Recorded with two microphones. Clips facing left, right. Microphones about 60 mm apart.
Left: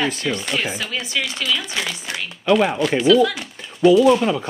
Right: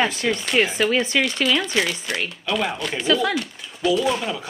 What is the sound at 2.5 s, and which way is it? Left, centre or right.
Speech, left.